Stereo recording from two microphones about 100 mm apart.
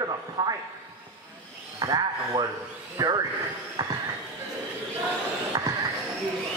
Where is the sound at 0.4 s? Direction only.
40° right (ahead or behind).